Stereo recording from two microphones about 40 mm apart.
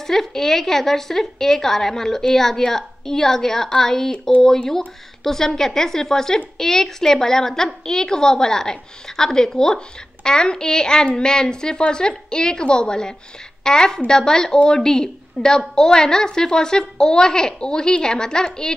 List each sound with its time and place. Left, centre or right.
0.0 s a woman's voice: centre